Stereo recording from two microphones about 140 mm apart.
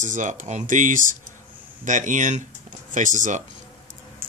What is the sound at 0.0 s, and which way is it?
Speech, 60° right (ahead or behind).